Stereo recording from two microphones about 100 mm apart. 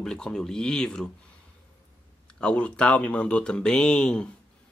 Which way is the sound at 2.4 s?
10° left (ahead or behind).